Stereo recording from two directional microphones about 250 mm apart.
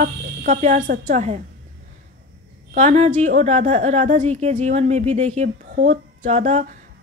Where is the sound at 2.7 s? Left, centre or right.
Right.